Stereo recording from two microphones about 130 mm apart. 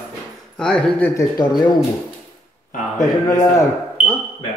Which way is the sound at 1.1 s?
30° left (ahead or behind).